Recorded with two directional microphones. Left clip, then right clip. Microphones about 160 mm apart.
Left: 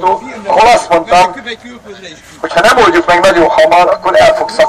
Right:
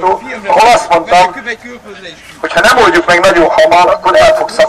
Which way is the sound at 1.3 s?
40° right (ahead or behind).